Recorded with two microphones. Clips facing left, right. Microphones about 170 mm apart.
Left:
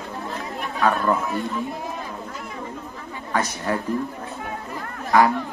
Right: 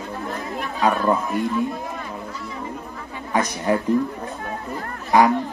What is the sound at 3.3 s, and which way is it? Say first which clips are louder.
Speech: right 3 dB; 15° right (ahead or behind).